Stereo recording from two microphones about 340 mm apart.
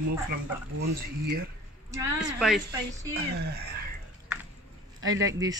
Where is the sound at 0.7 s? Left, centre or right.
Right.